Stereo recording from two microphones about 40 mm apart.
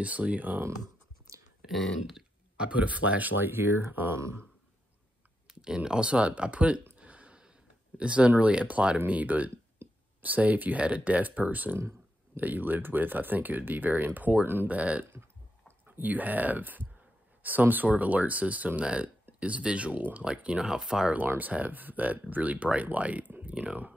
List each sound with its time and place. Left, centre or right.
0.0 s speech: right
2.7 s speech: right
3.3 s speech: right
5.5 s a sound: centre
5.9 s speech: right
7.0 s a sound: right
8.0 s speech: right
8.9 s speech: right
14.7 s speech: right
18.8 s speech: right
20.0 s speech: right
20.2 s speech: right
21.2 s speech: right